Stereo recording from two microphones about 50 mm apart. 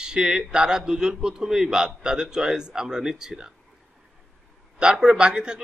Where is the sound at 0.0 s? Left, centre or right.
Centre.